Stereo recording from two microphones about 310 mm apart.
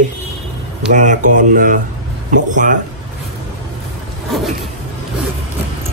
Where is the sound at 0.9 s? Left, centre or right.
Right.